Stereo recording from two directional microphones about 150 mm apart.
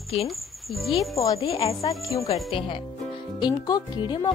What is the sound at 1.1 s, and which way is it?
Speech, 20° left (ahead or behind).